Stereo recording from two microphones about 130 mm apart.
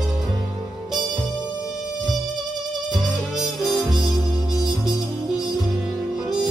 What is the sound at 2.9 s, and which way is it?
Music, centre (ahead or behind).